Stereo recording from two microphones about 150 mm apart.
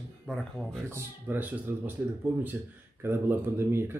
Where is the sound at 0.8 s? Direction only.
15° right (ahead or behind).